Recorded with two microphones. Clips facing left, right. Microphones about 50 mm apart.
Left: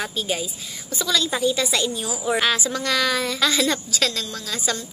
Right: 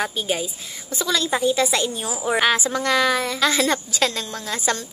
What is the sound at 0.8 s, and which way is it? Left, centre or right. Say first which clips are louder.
A woman's voice: even; right.